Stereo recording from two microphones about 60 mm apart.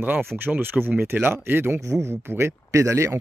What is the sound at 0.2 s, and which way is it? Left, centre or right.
Speech, right.